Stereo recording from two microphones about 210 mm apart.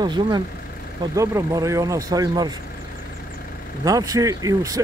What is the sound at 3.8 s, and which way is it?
Speech, 15° right (ahead or behind).